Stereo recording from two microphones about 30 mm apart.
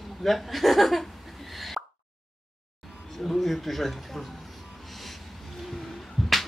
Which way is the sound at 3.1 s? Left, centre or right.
Centre.